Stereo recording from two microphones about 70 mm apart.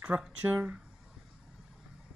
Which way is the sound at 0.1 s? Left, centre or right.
Right.